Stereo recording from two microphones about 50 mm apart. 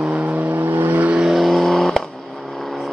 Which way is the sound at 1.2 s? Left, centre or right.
Centre.